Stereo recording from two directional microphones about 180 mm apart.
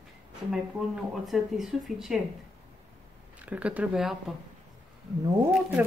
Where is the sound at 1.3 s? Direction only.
Centre (ahead or behind).